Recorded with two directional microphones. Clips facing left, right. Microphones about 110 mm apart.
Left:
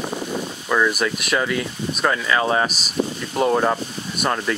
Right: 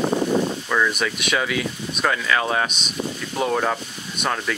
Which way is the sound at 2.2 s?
20° left (ahead or behind).